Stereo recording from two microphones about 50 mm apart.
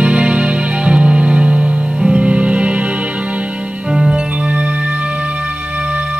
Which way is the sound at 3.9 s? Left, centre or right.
Centre.